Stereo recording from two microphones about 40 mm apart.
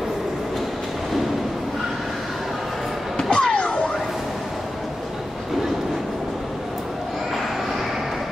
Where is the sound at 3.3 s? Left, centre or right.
Left.